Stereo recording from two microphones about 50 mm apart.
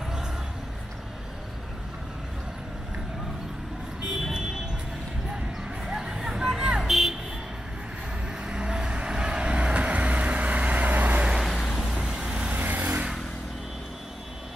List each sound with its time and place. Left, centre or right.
5.9 s hubbub: centre
6.8 s a sound: centre
8.5 s vehicle: centre; by 11.2 s right
11.3 s vehicle: centre
12.0 s vehicle: centre
12.5 s vehicle: right